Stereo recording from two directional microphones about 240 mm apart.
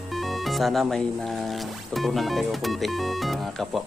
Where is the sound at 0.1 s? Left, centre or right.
Centre.